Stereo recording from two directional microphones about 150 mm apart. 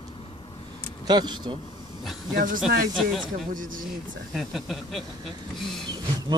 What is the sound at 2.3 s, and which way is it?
Speech, 65° right (ahead or behind).